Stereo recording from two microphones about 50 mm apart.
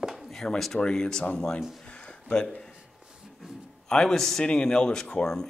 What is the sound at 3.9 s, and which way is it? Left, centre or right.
Speech, centre.